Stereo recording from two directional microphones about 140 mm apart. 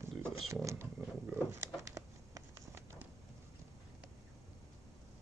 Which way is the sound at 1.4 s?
20° right (ahead or behind).